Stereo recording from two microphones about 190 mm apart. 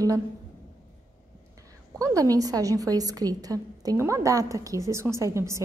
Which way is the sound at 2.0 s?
15° right (ahead or behind).